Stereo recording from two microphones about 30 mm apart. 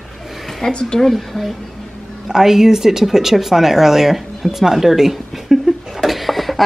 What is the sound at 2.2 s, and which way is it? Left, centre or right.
Speech, centre.